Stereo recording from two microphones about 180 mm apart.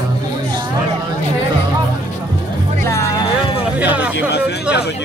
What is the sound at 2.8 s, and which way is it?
Music, 15° left (ahead or behind).